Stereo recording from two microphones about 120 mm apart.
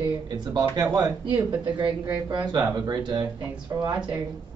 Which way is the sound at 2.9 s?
35° right (ahead or behind).